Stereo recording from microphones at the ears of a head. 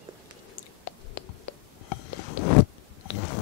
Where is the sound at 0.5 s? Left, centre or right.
Left.